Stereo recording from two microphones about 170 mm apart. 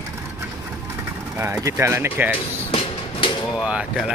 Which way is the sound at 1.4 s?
15° right (ahead or behind).